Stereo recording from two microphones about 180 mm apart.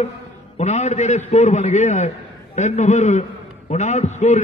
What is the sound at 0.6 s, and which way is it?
A man's voice, 40° left (ahead or behind).